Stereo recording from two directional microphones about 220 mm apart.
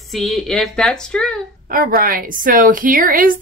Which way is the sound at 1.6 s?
40° right (ahead or behind).